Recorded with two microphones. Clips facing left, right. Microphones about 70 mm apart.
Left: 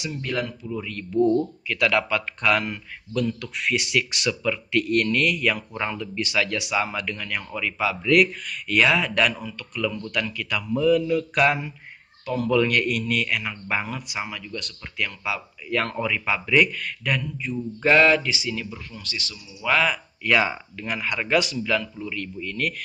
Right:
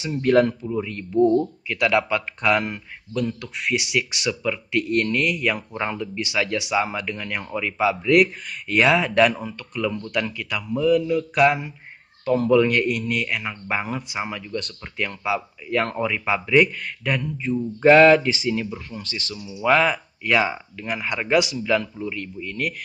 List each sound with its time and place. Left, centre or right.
0.0 s speech: right
0.7 s speech: right
10.7 s speech: centre
12.3 s speech: right
20.2 s speech: centre